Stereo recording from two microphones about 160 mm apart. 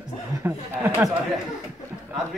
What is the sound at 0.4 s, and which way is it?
Speech, 15° right (ahead or behind).